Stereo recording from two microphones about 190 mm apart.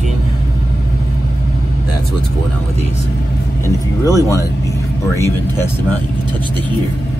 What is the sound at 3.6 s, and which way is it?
Speech, 15° left (ahead or behind).